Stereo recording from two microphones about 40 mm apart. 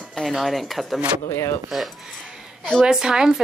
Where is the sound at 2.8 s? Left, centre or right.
Centre.